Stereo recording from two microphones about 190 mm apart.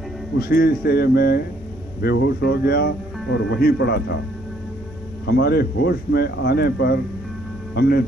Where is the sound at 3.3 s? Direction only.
70° left (ahead or behind).